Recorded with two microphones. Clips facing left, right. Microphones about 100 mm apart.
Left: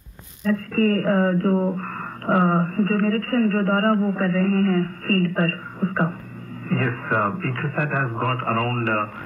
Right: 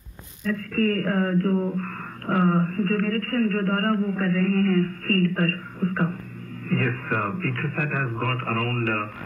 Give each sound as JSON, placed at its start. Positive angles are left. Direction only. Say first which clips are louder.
{"t": 0.5, "sound": "speech", "louder": "left 4 dB", "side_deg": 30}